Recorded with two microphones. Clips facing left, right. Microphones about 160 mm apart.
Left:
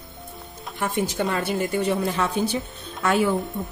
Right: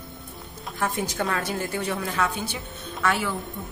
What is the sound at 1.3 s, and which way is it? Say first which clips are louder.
A woman's voice: left 4 dB; 20° left (ahead or behind).